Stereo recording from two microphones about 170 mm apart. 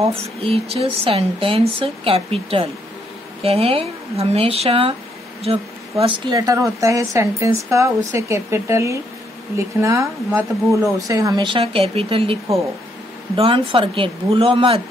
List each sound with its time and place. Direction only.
0.0 s speech: 35° right (ahead or behind)